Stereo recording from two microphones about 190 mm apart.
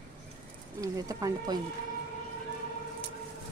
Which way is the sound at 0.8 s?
20° right (ahead or behind).